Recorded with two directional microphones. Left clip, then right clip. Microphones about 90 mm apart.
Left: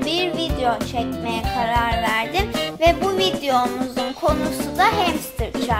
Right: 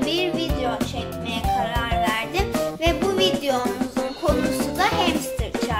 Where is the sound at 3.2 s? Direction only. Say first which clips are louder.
Even; 55° left (ahead or behind).